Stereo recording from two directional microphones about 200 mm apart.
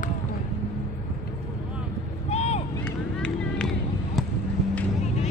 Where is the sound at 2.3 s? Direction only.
30° left (ahead or behind).